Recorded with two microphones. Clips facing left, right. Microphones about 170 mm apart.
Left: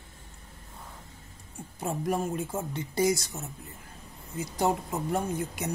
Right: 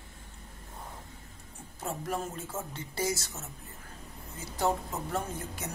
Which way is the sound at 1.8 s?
15° left (ahead or behind).